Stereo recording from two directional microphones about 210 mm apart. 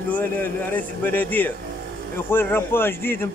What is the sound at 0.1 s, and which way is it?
Speech, 10° left (ahead or behind).